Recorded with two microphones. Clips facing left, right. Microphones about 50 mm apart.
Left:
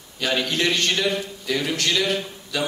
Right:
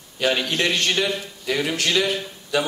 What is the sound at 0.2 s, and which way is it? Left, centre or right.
A man's voice, centre.